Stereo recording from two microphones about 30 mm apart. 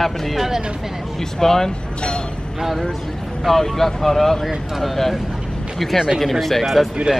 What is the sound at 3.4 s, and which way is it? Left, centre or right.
Speech, centre.